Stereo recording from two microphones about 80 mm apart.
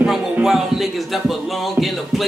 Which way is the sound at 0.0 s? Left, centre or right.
Centre.